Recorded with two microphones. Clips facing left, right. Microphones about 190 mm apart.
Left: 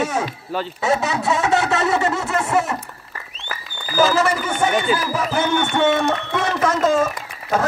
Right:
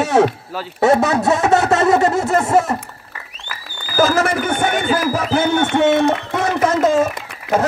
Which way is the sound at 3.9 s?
50° right (ahead or behind).